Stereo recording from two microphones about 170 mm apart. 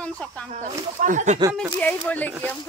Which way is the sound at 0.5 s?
50° right (ahead or behind).